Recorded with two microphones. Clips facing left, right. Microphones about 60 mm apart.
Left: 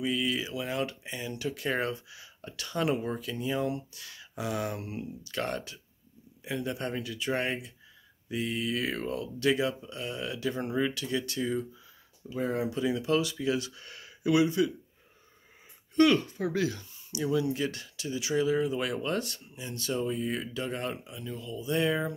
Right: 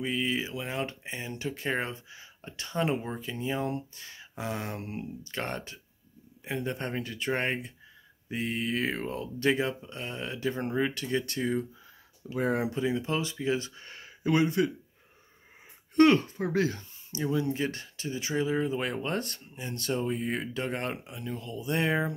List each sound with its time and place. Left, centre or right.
0.0 s speech: right
12.3 s speech: right
12.7 s speech: right
16.0 s speech: right